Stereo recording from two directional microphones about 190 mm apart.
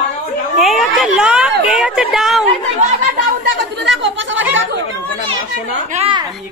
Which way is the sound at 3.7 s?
80° right.